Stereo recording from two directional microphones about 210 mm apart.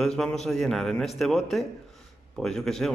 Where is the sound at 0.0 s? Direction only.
5° left (ahead or behind).